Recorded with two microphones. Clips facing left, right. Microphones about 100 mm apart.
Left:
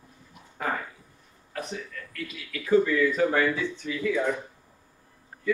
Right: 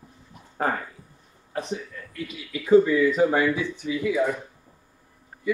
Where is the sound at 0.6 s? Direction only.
35° right (ahead or behind).